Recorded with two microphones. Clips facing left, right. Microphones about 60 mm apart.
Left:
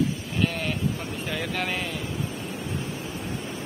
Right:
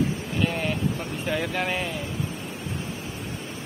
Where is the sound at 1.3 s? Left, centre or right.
Centre.